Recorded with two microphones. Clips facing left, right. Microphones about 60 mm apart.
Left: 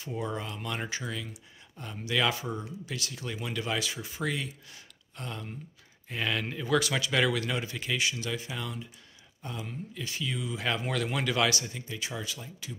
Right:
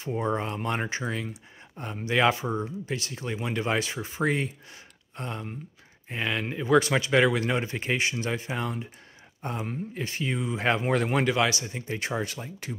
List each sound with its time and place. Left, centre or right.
0.0 s speech: right
11.3 s speech: centre
11.9 s speech: right